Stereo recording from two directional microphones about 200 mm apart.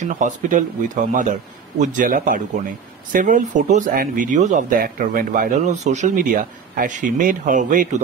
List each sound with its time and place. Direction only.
0.0 s speech: 40° right (ahead or behind)